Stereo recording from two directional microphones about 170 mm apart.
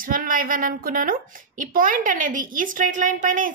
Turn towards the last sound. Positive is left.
turn(degrees=-50)  # may be behind; listen again after turning